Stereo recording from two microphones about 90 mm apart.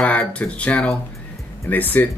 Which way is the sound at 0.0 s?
15° left (ahead or behind).